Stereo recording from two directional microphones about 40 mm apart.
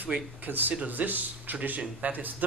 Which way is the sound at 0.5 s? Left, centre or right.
Right.